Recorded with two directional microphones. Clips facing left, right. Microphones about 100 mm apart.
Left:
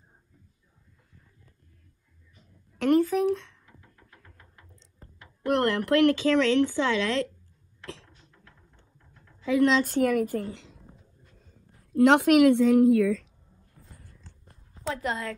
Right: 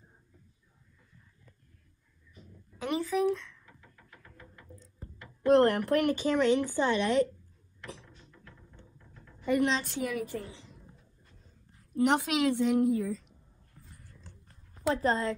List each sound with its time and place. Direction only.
3.0 s speech: 50° left (ahead or behind)
5.5 s a woman's voice: 75° left (ahead or behind); by 7.2 s 90° left
9.4 s speech: 90° left
9.8 s speech: 45° left (ahead or behind)
11.9 s a woman's voice: 85° left
12.3 s a woman's voice: 55° left (ahead or behind)
12.5 s a woman's voice: 90° left
15.0 s a woman's voice: 35° right (ahead or behind)